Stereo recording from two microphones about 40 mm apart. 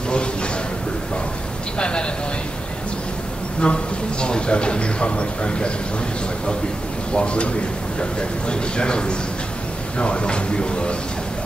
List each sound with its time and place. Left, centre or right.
1.8 s a sound: left
3.6 s a man's voice: left
7.2 s a man's voice: left